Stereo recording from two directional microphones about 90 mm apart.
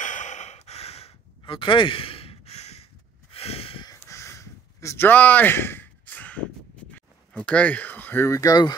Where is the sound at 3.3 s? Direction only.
90° left.